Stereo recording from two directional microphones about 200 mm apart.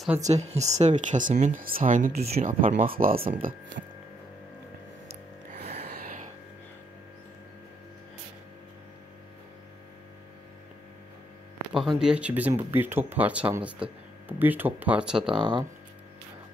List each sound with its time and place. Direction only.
0.2 s speech: 35° right (ahead or behind)
11.7 s speech: centre (ahead or behind)
15.3 s speech: 25° right (ahead or behind)